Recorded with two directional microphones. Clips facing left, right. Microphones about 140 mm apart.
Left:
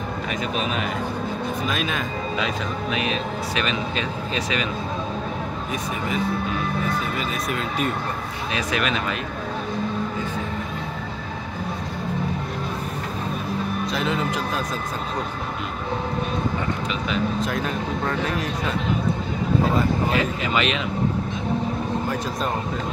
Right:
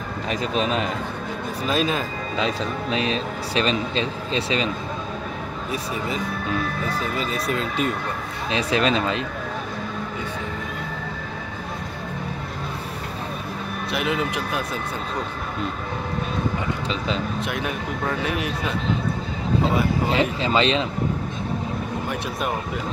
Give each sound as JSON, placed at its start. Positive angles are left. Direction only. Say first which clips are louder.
{"t": 0.6, "sound": "speech", "louder": "right 4 dB", "side_deg": -30}
{"t": 7.2, "sound": "speech", "louder": "right 1 dB", "side_deg": -30}
{"t": 13.9, "sound": "speech", "louder": "right 2 dB", "side_deg": -15}
{"t": 17.5, "sound": "speech", "louder": "left 2 dB", "side_deg": -10}
{"t": 20.1, "sound": "speech", "louder": "right 2 dB", "side_deg": -25}